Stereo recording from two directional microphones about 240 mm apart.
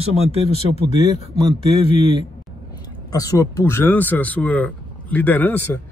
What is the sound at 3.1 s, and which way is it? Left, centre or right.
Speech, centre.